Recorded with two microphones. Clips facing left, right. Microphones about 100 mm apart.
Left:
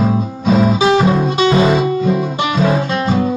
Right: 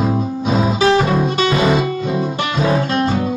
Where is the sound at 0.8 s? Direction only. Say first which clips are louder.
Left 2 dB; 15° left (ahead or behind).